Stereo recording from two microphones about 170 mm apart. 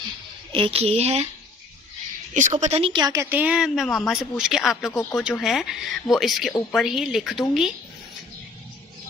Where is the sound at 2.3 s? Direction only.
45° right (ahead or behind); by 3.2 s 25° right (ahead or behind).